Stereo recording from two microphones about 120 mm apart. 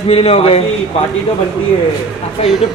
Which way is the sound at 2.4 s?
55° left (ahead or behind).